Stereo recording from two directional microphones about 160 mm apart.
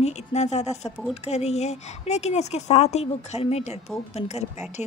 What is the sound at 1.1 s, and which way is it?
A woman's voice, 40° left (ahead or behind).